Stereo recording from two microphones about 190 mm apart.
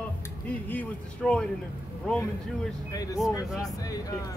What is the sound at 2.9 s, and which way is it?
Speech, 20° left (ahead or behind).